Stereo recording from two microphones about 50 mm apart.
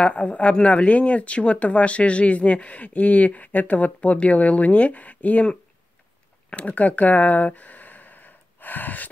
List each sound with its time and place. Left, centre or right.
0.0 s speech: left